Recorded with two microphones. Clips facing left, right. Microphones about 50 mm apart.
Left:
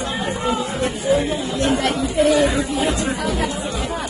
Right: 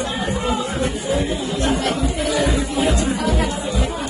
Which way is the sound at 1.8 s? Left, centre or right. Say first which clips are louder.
Left 4 dB; left.